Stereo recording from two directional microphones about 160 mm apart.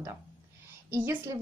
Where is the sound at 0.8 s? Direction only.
15° right (ahead or behind).